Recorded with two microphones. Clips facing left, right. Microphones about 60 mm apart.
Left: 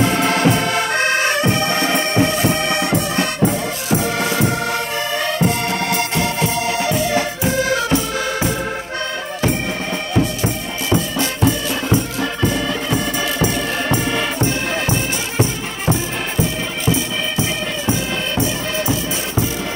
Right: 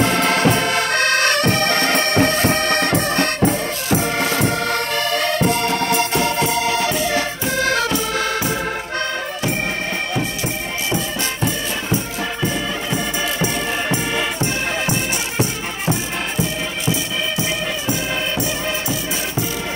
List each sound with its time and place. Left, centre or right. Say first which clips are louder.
0.3 s music: even; right
4.6 s music: right 1 dB; right
7.5 s music: left 1 dB; right